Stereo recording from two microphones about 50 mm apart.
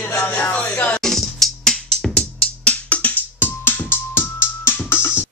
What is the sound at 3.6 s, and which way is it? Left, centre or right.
Music, left.